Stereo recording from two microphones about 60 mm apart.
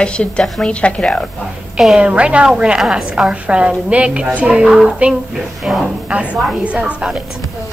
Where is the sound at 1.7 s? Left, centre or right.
Centre.